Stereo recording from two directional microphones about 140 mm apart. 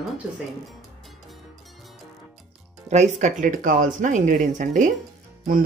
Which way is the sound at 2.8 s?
55° right (ahead or behind).